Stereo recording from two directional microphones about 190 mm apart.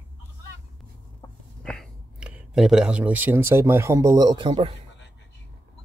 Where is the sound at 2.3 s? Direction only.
5° right (ahead or behind); by 4.7 s 25° right (ahead or behind).